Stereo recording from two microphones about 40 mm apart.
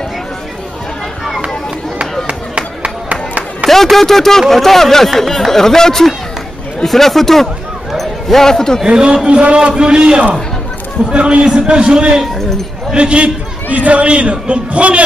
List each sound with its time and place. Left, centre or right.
2.2 s a sound: right
3.6 s speech: centre
8.8 s a man's voice: right
13.7 s a man's voice: right